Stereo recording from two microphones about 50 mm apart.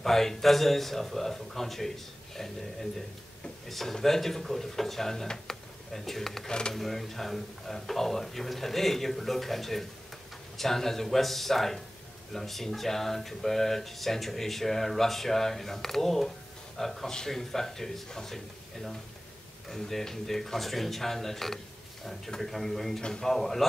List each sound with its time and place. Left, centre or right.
0.0 s speech: centre